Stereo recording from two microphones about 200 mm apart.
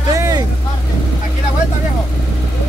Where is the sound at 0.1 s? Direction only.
15° right (ahead or behind).